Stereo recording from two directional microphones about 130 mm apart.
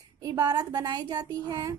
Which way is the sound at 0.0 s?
30° right (ahead or behind).